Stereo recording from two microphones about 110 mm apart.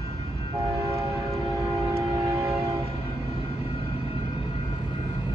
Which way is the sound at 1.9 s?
25° right (ahead or behind).